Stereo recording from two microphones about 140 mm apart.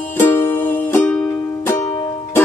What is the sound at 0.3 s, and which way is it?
Music, 15° left (ahead or behind).